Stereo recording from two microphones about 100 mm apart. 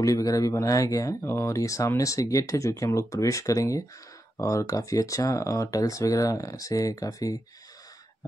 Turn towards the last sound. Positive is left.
turn(degrees=35)  # may be behind; listen again after turning